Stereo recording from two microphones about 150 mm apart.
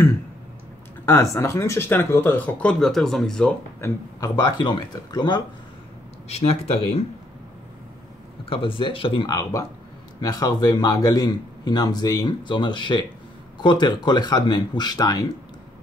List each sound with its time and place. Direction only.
1.0 s speech: 20° left (ahead or behind)
3.8 s a man's voice: 25° left (ahead or behind)
6.2 s speech: 45° left (ahead or behind)
8.5 s a man's voice: 35° left (ahead or behind)